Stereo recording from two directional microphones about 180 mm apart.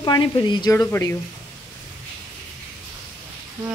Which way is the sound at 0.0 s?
25° left (ahead or behind).